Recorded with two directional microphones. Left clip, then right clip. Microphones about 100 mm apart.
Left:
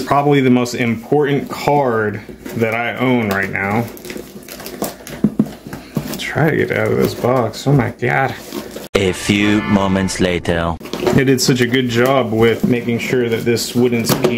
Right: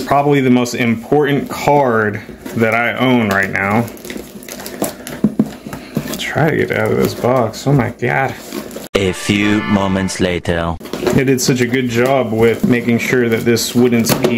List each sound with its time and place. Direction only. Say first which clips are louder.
0.0 s speech: right 1 dB; 10° left (ahead or behind)
0.7 s speech: right 2 dB; 5° right (ahead or behind)
1.1 s speech: right 1 dB; 15° right (ahead or behind)
6.1 s speech: right 1 dB; 5° right (ahead or behind)
11.1 s speech: even; 15° left (ahead or behind)
12.6 s speech: right 3 dB; 30° right (ahead or behind)